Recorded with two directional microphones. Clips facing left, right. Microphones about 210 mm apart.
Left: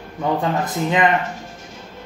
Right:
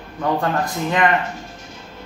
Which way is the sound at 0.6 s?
20° left (ahead or behind).